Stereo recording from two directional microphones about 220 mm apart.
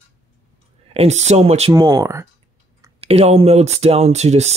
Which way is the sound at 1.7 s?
15° right (ahead or behind).